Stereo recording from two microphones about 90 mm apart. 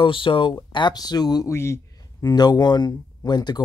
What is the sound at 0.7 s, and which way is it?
Speech, 55° left (ahead or behind).